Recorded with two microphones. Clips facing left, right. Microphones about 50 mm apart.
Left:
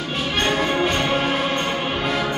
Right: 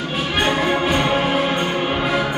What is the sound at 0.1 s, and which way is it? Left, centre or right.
Music, centre.